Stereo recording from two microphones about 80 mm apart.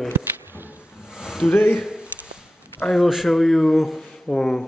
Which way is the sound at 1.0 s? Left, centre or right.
Centre.